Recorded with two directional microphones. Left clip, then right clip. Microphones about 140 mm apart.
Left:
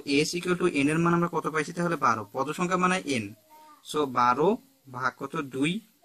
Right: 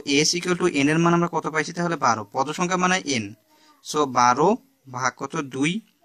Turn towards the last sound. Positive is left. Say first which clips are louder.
# right 4 dB
turn(degrees=-55)  # may be behind; listen again after turning